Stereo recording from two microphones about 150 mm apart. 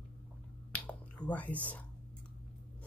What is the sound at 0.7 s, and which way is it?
Whispering, 10° left (ahead or behind).